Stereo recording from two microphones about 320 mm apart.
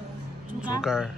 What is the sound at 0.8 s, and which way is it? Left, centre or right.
Speech, centre.